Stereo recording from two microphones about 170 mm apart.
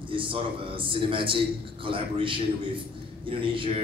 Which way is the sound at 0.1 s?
30° right (ahead or behind).